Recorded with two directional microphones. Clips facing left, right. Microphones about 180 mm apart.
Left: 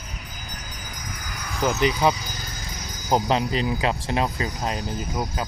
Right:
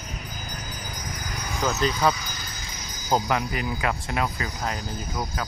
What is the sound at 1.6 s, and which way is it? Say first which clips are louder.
Speech: left 3 dB; 15° left (ahead or behind).